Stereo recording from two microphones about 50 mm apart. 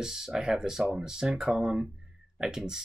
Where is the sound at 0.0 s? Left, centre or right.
Centre.